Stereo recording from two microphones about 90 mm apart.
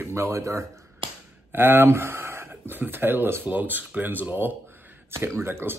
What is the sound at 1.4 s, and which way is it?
Speech, 25° right (ahead or behind).